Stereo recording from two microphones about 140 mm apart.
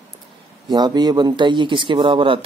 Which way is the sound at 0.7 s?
30° right (ahead or behind).